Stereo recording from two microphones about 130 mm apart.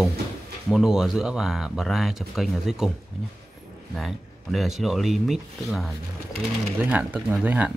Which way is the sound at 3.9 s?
Centre (ahead or behind).